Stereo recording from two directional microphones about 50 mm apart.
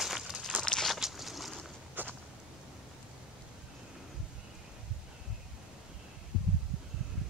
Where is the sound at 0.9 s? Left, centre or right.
Centre.